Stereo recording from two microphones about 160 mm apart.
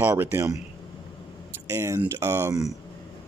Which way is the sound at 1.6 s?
20° right (ahead or behind).